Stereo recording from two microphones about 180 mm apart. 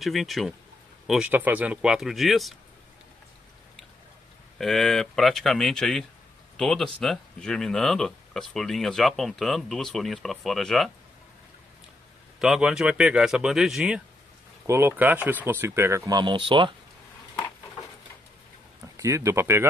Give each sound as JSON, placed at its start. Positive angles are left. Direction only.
{"t": 0.0, "sound": "speech", "side_deg": 0}
{"t": 4.6, "sound": "speech", "side_deg": 0}
{"t": 12.4, "sound": "speech", "side_deg": -5}
{"t": 14.7, "sound": "speech", "side_deg": -15}
{"t": 18.9, "sound": "speech", "side_deg": -15}